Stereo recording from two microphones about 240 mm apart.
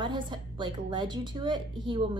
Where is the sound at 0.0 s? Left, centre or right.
Centre.